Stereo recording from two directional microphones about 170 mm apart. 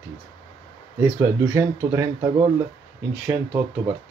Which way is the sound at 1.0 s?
15° right (ahead or behind).